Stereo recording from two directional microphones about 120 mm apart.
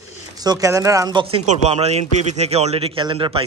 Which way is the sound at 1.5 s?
60° right (ahead or behind).